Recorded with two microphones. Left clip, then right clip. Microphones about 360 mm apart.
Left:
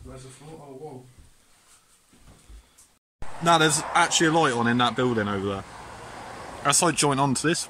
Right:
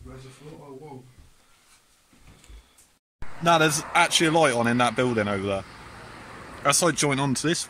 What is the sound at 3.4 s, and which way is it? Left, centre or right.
Speech, centre.